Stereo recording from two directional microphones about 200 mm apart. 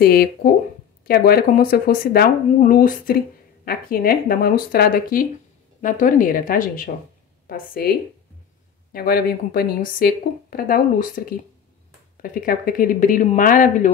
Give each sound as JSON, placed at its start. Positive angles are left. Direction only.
{"t": 0.0, "sound": "speech", "side_deg": 50}
{"t": 8.9, "sound": "speech", "side_deg": 50}